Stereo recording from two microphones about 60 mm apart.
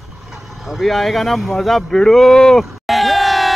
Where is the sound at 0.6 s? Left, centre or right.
Centre.